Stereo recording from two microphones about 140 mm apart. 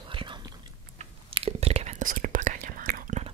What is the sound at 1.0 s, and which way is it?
Whispering, 45° right (ahead or behind).